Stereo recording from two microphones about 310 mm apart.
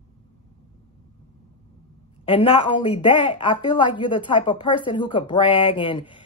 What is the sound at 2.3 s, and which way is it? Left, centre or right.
A woman's voice, centre.